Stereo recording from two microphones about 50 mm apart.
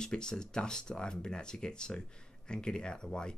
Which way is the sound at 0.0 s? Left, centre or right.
Centre.